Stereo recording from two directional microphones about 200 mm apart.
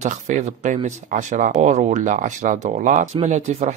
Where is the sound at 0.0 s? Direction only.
35° right (ahead or behind).